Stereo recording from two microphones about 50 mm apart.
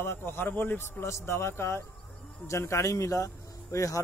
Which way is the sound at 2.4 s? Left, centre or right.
Left.